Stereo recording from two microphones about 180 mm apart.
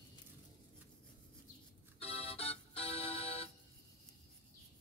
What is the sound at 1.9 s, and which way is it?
Music, 35° left (ahead or behind).